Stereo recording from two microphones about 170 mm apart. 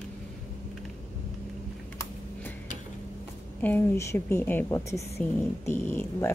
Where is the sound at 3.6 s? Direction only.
15° left (ahead or behind).